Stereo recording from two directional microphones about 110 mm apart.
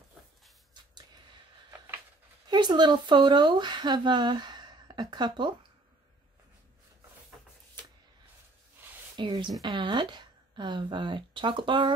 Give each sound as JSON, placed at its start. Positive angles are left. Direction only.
{"t": 2.5, "sound": "speech", "side_deg": -40}
{"t": 9.1, "sound": "a woman's voice", "side_deg": -45}